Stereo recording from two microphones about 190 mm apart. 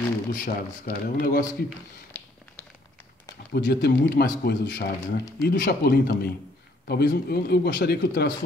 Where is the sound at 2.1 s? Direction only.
10° left (ahead or behind).